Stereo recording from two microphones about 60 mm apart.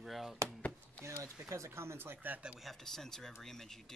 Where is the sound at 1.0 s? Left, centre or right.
Right.